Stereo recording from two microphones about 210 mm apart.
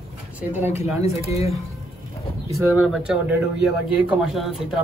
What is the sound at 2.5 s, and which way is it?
Speech, 10° right (ahead or behind).